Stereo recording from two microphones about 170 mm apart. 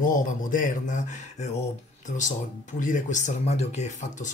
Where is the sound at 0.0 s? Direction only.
50° left (ahead or behind).